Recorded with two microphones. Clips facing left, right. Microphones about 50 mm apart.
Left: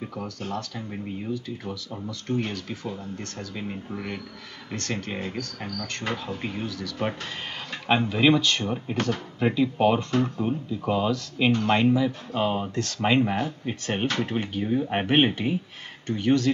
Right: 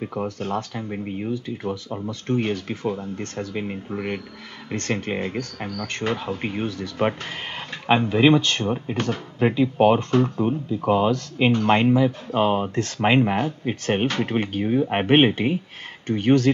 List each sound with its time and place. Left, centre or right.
0.0 s speech: right
8.4 s speech: right
8.6 s speech: centre
8.9 s speech: right